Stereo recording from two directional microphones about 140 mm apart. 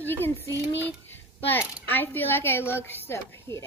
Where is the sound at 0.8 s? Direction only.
15° left (ahead or behind).